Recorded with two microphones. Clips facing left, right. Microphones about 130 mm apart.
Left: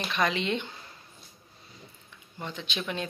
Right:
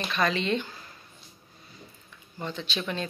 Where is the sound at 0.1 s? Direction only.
15° left (ahead or behind).